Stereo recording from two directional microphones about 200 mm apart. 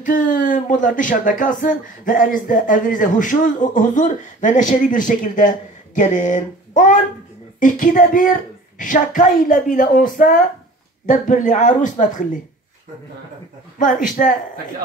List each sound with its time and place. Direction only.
0.0 s speech: 40° left (ahead or behind)
13.7 s speech: 40° left (ahead or behind)